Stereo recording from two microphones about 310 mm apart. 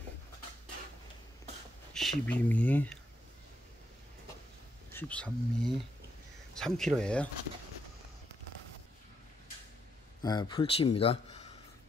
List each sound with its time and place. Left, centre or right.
2.0 s speech: centre
4.9 s speech: centre
10.2 s speech: centre